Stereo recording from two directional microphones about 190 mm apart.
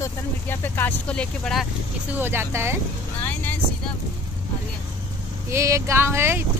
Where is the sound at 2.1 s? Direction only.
10° right (ahead or behind).